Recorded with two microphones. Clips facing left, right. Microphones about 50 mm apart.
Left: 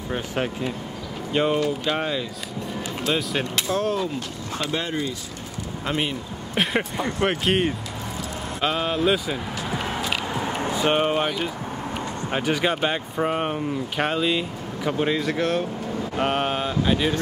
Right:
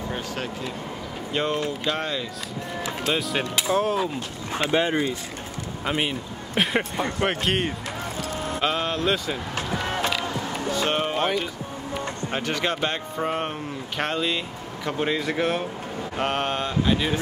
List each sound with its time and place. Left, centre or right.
1.3 s speech: centre
3.1 s speech: centre
4.6 s speech: right
5.9 s speech: centre
7.2 s mantra: centre
10.3 s a sound: left
12.3 s speech: centre
14.9 s mantra: centre
16.2 s mantra: centre